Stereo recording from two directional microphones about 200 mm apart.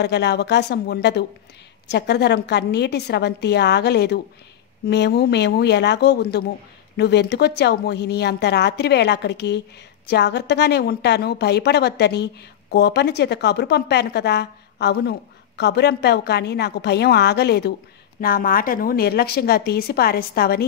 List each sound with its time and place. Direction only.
0.0 s a woman's voice: 55° left (ahead or behind)